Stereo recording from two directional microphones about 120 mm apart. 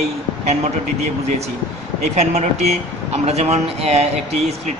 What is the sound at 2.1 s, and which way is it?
Speech, 70° right (ahead or behind).